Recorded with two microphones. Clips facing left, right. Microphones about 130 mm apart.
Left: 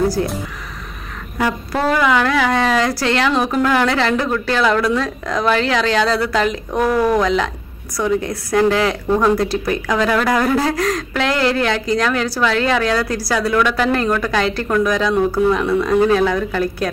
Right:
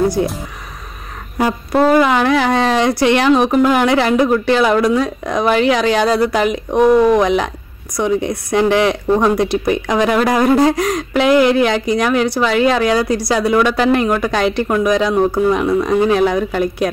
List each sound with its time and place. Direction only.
2.0 s speech: 20° right (ahead or behind)